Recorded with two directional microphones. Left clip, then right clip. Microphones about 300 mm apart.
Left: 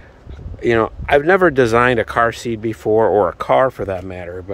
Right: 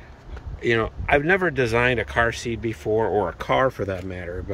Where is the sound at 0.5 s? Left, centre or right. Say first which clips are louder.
Left 6 dB; centre.